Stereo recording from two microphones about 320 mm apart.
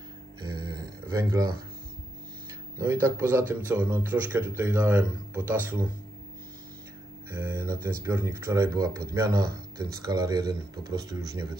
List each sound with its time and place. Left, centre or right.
0.4 s a sound: centre
2.8 s speech: centre
7.2 s speech: centre